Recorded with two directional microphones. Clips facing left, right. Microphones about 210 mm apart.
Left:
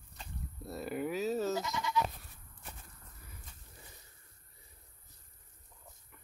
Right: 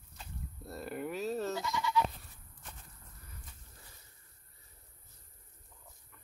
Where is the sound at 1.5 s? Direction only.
20° left (ahead or behind).